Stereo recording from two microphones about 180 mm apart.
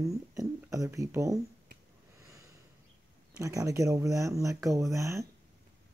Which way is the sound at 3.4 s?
15° right (ahead or behind).